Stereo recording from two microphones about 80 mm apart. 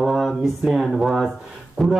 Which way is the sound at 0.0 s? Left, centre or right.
Centre.